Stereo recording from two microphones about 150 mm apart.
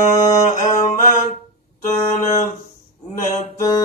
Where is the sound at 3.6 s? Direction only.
25° left (ahead or behind).